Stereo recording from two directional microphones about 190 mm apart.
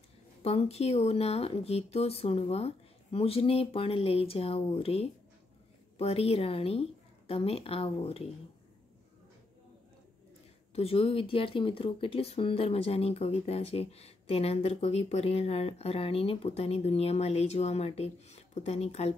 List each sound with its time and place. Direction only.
0.4 s speech: 30° left (ahead or behind)
10.7 s speech: 30° left (ahead or behind)